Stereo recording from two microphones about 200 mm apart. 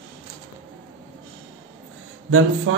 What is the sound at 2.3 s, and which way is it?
Speech, 90° right.